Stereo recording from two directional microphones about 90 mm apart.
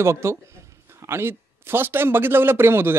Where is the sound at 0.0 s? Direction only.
30° right (ahead or behind).